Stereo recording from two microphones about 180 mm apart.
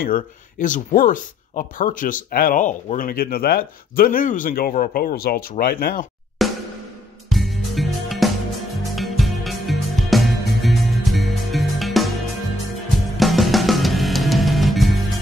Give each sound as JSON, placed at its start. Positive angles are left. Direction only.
{"t": 0.0, "sound": "speech", "side_deg": 50}
{"t": 6.4, "sound": "snare drum", "side_deg": 0}
{"t": 7.2, "sound": "music", "side_deg": 0}
{"t": 13.2, "sound": "music", "side_deg": 0}